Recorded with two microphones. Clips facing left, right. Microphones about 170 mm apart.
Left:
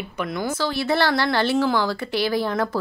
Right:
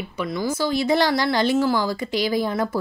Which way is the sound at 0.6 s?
15° right (ahead or behind).